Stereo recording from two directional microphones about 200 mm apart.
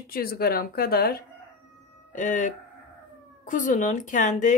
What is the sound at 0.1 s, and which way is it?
Speech, 50° left (ahead or behind).